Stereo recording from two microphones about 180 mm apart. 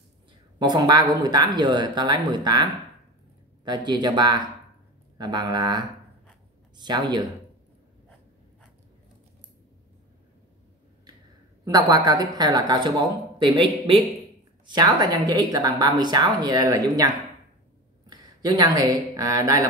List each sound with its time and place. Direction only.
0.6 s a woman's voice: 25° right (ahead or behind)
11.6 s a woman's voice: 20° right (ahead or behind)